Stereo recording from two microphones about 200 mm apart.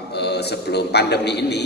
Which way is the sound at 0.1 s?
55° left (ahead or behind).